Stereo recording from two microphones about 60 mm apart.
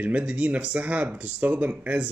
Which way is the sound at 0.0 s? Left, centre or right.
Right.